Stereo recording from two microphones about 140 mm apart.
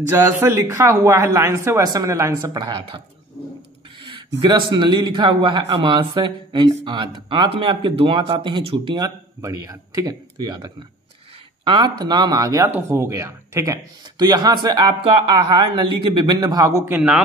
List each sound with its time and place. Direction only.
0.1 s speech: 15° right (ahead or behind); by 3.0 s 40° right (ahead or behind)
4.0 s speech: 35° right (ahead or behind); by 17.2 s 10° right (ahead or behind)